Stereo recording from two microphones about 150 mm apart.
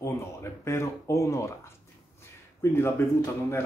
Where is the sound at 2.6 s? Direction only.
15° left (ahead or behind).